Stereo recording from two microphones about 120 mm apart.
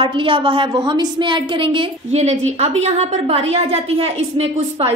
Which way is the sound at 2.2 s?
70° right (ahead or behind).